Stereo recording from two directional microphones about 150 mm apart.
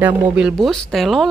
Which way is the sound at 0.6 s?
Centre (ahead or behind).